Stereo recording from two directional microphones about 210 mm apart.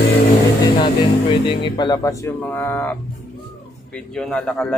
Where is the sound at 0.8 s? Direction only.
25° left (ahead or behind).